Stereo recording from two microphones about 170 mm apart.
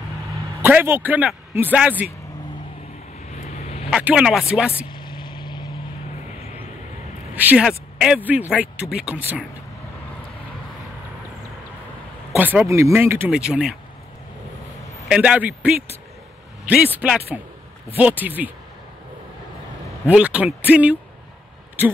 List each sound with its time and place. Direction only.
0.6 s speech: 10° right (ahead or behind)
3.3 s vehicle: 45° left (ahead or behind)
3.9 s speech: 5° right (ahead or behind)
4.9 s vehicle: 25° left (ahead or behind)
7.3 s speech: 10° right (ahead or behind)
12.3 s speech: 10° right (ahead or behind)
15.0 s speech: 5° right (ahead or behind)
20.1 s speech: 5° right (ahead or behind)